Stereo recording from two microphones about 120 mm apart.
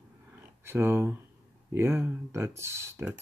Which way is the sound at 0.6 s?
20° right (ahead or behind).